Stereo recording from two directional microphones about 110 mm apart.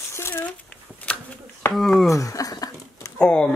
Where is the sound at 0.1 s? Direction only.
20° left (ahead or behind).